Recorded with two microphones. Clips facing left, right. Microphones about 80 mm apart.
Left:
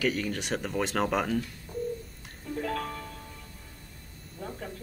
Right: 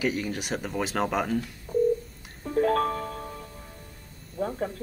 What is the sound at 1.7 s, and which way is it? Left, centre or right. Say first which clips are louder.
Telephone dialing: right 14 dB; right.